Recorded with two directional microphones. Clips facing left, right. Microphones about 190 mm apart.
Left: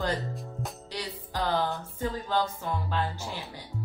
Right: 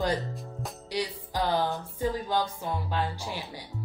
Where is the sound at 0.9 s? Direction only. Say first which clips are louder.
Right 5 dB; 15° right (ahead or behind).